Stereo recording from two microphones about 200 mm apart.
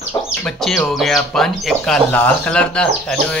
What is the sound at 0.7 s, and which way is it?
Speech, centre (ahead or behind).